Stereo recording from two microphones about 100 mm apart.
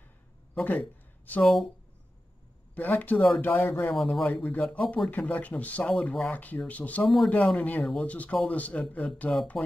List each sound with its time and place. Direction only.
0.6 s a sound: 15° left (ahead or behind)
1.4 s speech: 5° left (ahead or behind)
2.7 s speech: 15° left (ahead or behind)
3.9 s speech: centre (ahead or behind)
4.3 s speech: 15° left (ahead or behind)
5.1 s speech: 15° left (ahead or behind)